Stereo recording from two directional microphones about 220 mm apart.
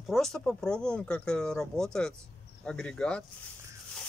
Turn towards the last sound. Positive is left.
turn(degrees=5)  # may be behind; listen again after turning